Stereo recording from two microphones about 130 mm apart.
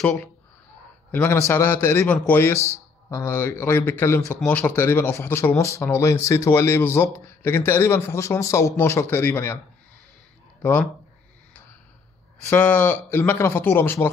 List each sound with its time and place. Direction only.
1.1 s speech: 15° left (ahead or behind)
10.6 s speech: 15° left (ahead or behind)
12.4 s speech: 15° left (ahead or behind)